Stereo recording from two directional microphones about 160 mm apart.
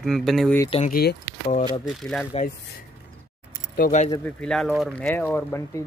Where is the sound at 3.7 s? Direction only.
55° left (ahead or behind).